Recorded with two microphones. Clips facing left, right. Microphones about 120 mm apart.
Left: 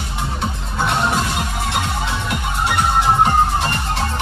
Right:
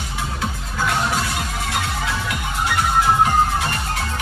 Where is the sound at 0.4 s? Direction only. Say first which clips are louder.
Left 3 dB; 30° left (ahead or behind).